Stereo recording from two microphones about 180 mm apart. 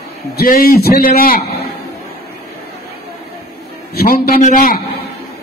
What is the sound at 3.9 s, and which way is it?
Speech, 55° left (ahead or behind).